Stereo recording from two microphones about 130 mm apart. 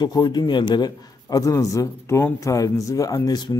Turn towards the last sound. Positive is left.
turn(degrees=30)  # may be behind; listen again after turning